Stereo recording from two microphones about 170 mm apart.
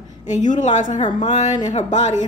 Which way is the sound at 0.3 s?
45° left (ahead or behind).